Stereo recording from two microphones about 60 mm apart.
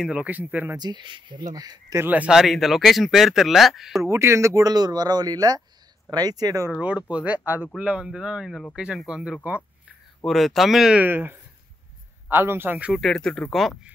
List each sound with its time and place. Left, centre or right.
0.1 s speech: right
1.4 s speech: right
2.0 s speech: right
2.3 s speech: centre
4.0 s speech: right
4.6 s speech: right
6.8 s speech: right
7.8 s speech: centre
9.5 s speech: right
10.2 s speech: centre
11.0 s a man's voice: right
12.9 s speech: centre